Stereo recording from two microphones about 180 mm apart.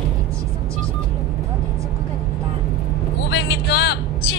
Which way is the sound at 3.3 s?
70° left (ahead or behind).